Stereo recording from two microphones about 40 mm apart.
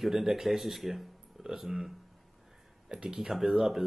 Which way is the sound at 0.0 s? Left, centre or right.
Centre.